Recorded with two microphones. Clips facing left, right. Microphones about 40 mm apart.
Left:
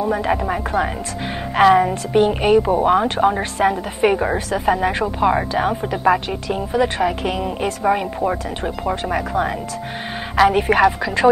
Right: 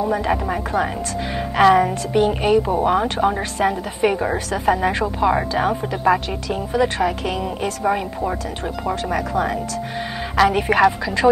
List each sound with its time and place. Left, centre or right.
0.3 s a woman's voice: centre
2.1 s a woman's voice: left
11.0 s speech: left